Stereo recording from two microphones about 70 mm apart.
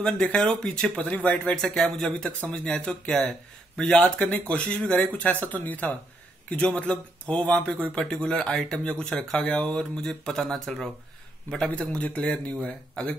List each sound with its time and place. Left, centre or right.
0.0 s speech: centre
1.6 s speech: centre
11.6 s speech: centre